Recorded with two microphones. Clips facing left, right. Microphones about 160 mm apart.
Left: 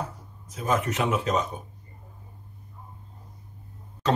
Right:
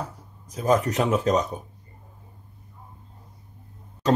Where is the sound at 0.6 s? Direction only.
35° right (ahead or behind).